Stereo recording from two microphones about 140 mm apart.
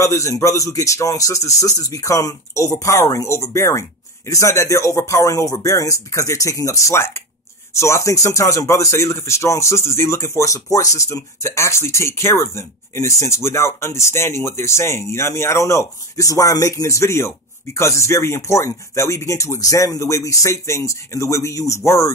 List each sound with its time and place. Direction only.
0.0 s speech: 20° left (ahead or behind)